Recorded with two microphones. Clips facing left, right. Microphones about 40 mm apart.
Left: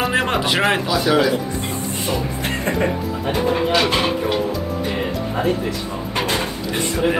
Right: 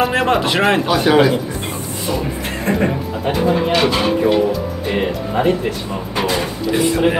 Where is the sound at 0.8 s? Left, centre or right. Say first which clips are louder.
Right 4 dB; right.